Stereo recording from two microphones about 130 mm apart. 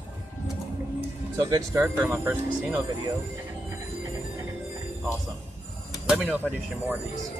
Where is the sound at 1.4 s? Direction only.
30° right (ahead or behind).